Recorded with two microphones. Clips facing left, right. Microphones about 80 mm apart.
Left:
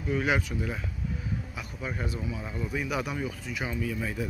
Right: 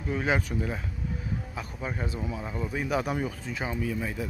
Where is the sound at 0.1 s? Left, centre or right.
Right.